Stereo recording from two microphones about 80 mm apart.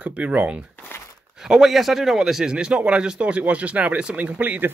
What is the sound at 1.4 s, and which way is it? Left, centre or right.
A man's voice, centre.